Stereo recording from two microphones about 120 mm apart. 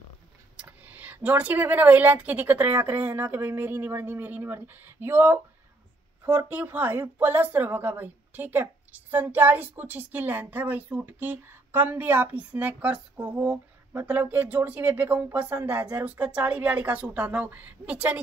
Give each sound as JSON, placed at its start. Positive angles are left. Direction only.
{"t": 0.6, "sound": "speech", "side_deg": -15}